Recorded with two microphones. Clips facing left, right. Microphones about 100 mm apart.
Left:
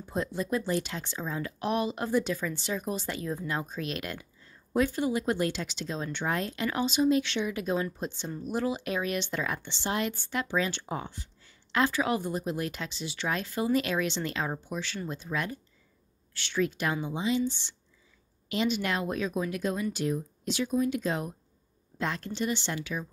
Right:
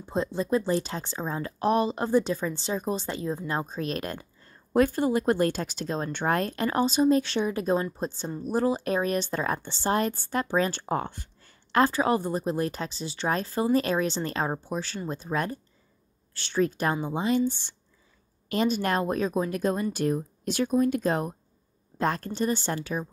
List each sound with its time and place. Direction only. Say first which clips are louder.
0.0 s speech: right 3 dB; 30° right (ahead or behind)